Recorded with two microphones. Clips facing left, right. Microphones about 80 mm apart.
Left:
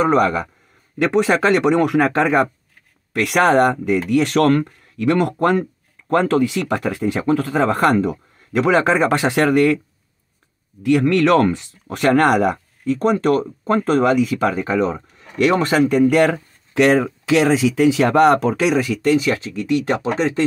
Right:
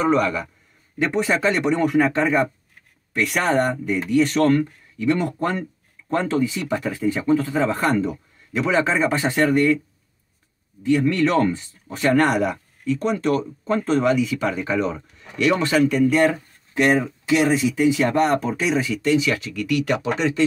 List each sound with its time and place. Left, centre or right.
0.0 s speech: left
0.9 s speech: left
10.8 s speech: left
15.9 s speech: left
18.6 s speech: left
19.0 s speech: left
19.3 s speech: left